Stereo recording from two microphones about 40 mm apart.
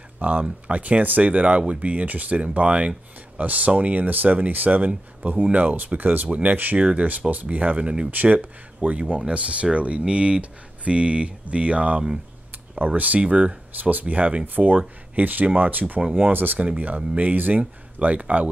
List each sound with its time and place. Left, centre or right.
0.2 s speech: right
8.1 s speech: right
13.2 s speech: right
13.8 s speech: right
14.4 s speech: right